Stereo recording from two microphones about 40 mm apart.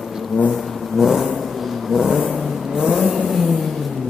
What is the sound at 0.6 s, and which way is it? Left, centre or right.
Vehicle, centre.